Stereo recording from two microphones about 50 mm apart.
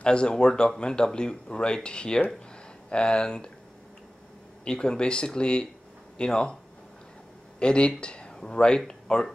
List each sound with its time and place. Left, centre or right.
0.0 s speech: centre
4.6 s speech: centre
7.5 s speech: centre